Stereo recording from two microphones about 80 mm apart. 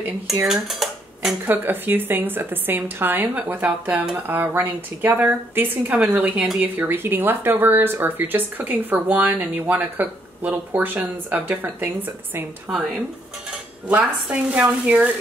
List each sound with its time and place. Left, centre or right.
0.5 s typewriter: centre
1.4 s speech: right
13.8 s speech: centre